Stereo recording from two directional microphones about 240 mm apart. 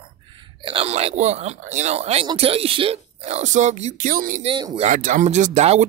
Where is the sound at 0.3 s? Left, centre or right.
Centre; by 4.5 s right.